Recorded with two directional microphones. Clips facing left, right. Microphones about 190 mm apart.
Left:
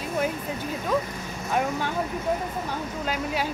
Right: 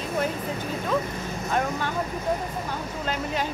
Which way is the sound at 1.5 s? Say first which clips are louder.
Left 1 dB; 10° left (ahead or behind).